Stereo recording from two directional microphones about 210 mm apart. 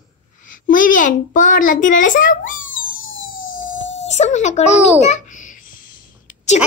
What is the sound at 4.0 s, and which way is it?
Speech, 35° left (ahead or behind).